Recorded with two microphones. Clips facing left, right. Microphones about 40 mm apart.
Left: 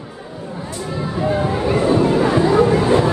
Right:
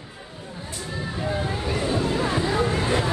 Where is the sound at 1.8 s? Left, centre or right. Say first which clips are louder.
Left 9 dB; left.